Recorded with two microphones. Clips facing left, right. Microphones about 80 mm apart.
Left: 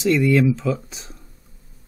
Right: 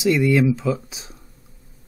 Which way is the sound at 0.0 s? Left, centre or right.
Centre.